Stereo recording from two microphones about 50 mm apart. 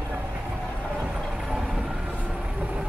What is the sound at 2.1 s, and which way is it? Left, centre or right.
Boat, right.